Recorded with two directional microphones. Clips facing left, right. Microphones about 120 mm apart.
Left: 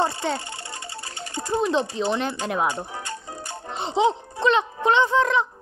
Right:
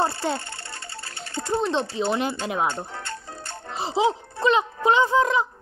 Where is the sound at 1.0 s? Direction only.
15° left (ahead or behind).